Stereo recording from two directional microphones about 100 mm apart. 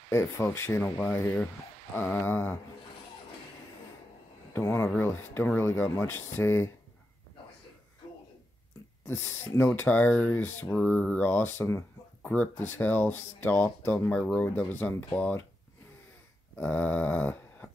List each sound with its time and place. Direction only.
0.1 s speech: 25° left (ahead or behind)
4.6 s speech: 25° left (ahead or behind)
9.0 s speech: 25° left (ahead or behind)
16.5 s a sound: 15° left (ahead or behind)